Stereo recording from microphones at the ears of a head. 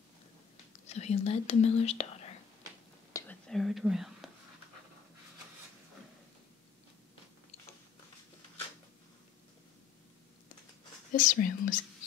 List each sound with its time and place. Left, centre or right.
0.7 s speech: left
3.4 s whispering: centre
11.1 s speech: left